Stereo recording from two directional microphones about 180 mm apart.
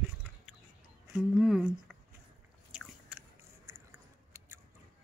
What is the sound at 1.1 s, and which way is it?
Speech, centre (ahead or behind).